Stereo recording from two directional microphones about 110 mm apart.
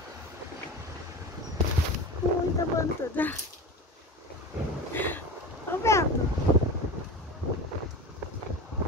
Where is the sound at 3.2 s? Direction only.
15° left (ahead or behind).